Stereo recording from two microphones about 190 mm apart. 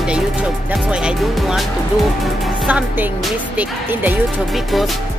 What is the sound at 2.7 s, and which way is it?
Speech, 10° right (ahead or behind).